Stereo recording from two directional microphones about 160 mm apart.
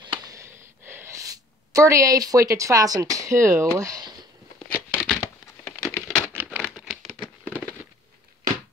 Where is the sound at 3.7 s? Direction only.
20° right (ahead or behind).